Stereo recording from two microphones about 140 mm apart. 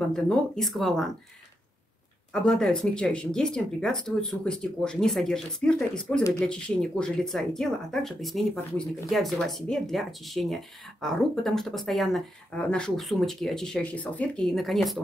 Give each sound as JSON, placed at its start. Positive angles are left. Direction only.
{"t": 0.1, "sound": "speech", "side_deg": 5}
{"t": 2.3, "sound": "speech", "side_deg": 5}